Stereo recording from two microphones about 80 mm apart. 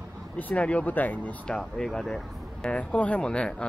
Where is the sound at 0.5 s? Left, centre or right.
Centre.